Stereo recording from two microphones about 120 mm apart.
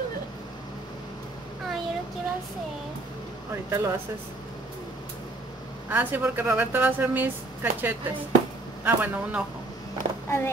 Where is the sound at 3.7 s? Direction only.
25° right (ahead or behind).